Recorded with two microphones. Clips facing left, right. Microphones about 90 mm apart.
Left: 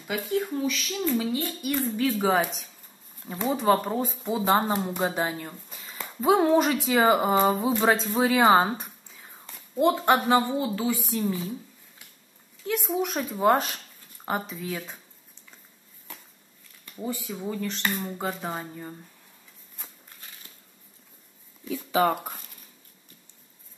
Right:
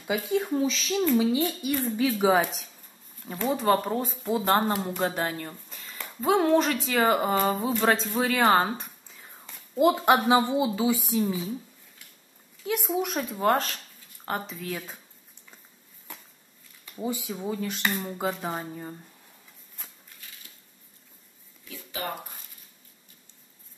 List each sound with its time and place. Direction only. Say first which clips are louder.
0.1 s a woman's voice: right 2 dB; 15° right (ahead or behind)
12.6 s speech: even; centre (ahead or behind)
17.0 s a woman's voice: right 1 dB; 15° right (ahead or behind)
17.3 s speech: even; 5° right (ahead or behind)